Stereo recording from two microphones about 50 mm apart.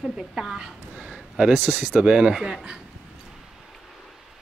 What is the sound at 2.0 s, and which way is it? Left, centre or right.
Speech, centre.